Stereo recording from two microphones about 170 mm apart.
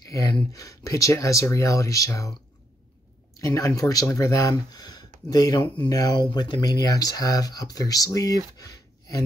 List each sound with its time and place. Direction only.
0.1 s speech: 20° left (ahead or behind)
3.3 s speech: 20° left (ahead or behind)